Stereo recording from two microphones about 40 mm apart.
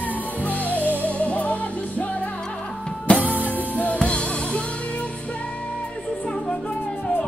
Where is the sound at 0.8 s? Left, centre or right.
Right.